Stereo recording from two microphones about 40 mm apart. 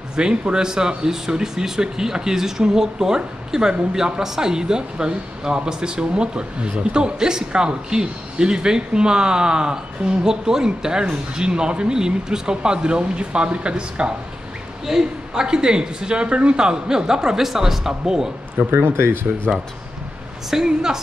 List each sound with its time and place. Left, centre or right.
0.1 s speech: right
14.9 s speech: centre
18.7 s speech: right
20.6 s speech: centre